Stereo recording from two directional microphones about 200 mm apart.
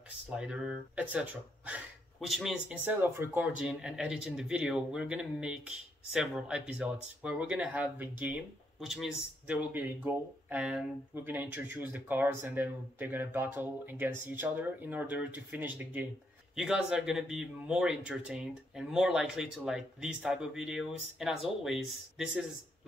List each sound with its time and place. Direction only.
0.4 s speech: 5° right (ahead or behind)